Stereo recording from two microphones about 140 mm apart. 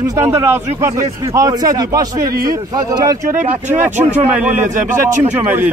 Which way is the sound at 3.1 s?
60° right (ahead or behind).